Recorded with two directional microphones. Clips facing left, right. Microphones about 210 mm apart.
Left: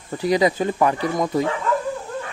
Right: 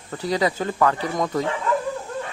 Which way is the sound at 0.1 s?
15° left (ahead or behind).